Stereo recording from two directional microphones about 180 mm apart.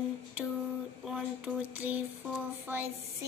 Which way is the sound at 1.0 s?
5° right (ahead or behind).